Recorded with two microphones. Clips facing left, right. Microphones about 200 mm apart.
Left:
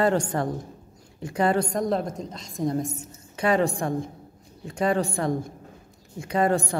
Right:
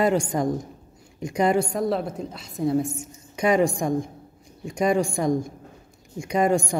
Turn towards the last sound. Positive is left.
turn(degrees=-15)  # may be behind; listen again after turning